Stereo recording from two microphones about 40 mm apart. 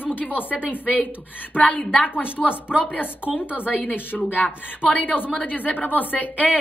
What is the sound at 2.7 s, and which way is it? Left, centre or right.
Speech, centre.